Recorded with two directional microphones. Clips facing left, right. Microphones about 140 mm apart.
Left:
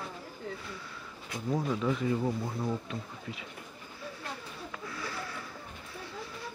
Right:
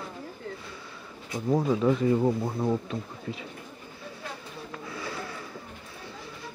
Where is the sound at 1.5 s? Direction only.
45° right (ahead or behind).